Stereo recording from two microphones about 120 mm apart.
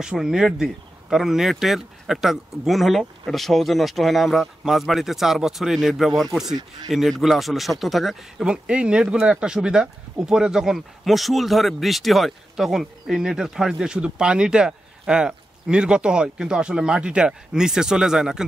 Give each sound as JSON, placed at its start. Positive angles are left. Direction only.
{"t": 0.0, "sound": "speech", "side_deg": -5}